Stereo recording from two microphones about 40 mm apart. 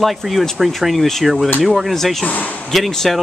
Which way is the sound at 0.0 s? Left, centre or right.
Centre.